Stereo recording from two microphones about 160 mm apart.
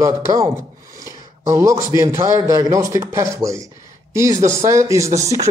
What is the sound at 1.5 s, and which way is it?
A man's voice, 20° right (ahead or behind).